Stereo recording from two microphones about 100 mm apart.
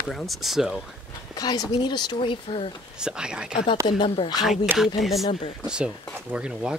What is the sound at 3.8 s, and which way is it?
Speech, 50° left (ahead or behind).